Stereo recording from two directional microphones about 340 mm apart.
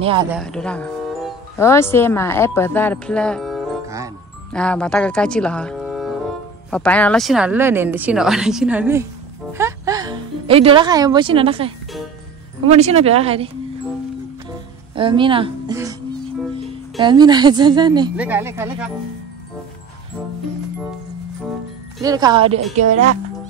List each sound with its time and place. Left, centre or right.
0.0 s speech: centre
0.4 s speech: centre
4.5 s speech: centre
9.5 s music: centre
12.7 s speech: centre
15.0 s speech: centre
22.0 s speech: centre